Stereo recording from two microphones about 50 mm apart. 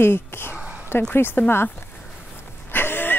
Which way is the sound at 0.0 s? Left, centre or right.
Left.